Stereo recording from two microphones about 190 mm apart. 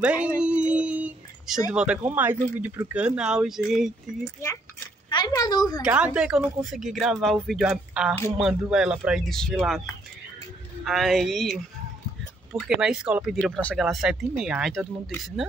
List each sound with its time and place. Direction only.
0.0 s speech: 5° right (ahead or behind)
0.4 s a sound: 5° right (ahead or behind)
1.7 s speech: 5° right (ahead or behind)
4.2 s speech: 15° left (ahead or behind)
5.8 s speech: 5° right (ahead or behind)
10.9 s speech: centre (ahead or behind)
12.5 s speech: 5° right (ahead or behind)